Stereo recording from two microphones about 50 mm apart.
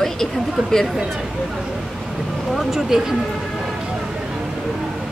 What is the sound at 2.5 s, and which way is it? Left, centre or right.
Speech, centre.